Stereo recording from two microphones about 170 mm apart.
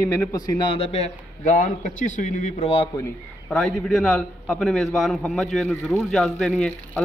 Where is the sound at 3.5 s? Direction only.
5° left (ahead or behind).